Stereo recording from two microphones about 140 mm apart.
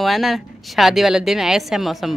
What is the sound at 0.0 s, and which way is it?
Speech, centre (ahead or behind).